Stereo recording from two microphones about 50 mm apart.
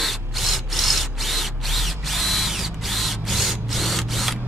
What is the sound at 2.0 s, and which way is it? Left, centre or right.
Drill, centre.